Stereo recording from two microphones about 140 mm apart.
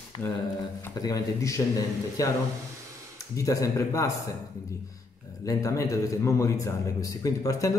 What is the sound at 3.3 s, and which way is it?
Speech, 25° left (ahead or behind).